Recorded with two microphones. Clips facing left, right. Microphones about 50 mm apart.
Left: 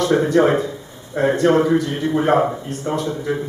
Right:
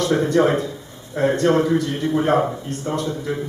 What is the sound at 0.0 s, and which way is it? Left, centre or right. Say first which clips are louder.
Speech: left 2 dB; centre.